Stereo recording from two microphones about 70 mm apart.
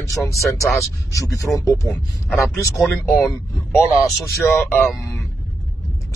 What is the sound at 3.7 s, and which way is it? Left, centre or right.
Speech, left.